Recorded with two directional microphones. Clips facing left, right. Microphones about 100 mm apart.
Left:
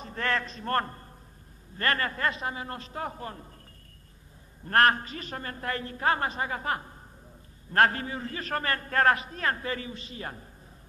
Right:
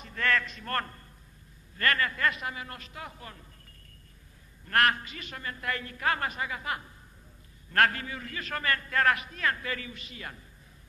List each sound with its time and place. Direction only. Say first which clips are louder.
0.0 s a man's voice: right 1 dB; 30° left (ahead or behind)
4.6 s a man's voice: left 3 dB; 35° left (ahead or behind)